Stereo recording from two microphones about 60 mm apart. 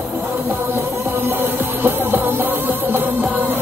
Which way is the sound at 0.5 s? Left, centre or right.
Right.